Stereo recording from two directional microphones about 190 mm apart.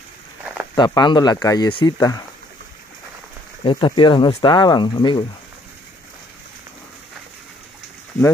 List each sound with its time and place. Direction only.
0.7 s speech: 25° left (ahead or behind)
3.6 s speech: 25° left (ahead or behind)